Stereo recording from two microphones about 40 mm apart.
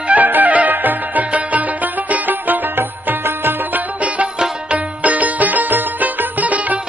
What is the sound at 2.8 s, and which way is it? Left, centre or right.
Music, right.